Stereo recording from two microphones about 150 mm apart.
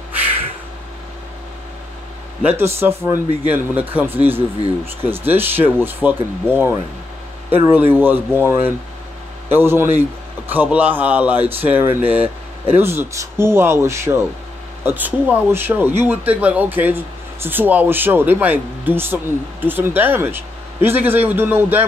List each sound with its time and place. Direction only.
2.5 s speech: 15° right (ahead or behind)